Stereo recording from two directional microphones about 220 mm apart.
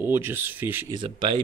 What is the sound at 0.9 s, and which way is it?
Speech, 20° right (ahead or behind).